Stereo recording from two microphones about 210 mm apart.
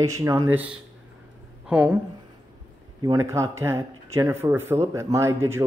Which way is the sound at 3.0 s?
15° right (ahead or behind).